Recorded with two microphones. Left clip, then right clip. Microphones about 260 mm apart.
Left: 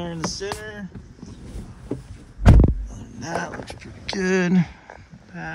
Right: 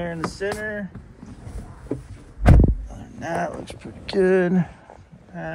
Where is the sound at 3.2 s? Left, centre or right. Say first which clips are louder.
Right 2 dB; centre.